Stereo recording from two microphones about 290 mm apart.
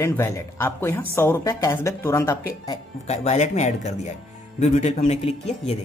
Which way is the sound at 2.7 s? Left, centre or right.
Left.